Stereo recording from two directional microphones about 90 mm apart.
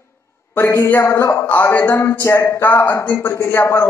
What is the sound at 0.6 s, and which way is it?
A man's voice, 30° left (ahead or behind).